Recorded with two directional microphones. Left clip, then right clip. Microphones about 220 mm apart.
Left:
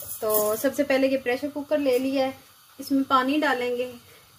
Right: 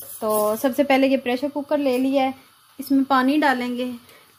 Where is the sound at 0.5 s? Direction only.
25° right (ahead or behind).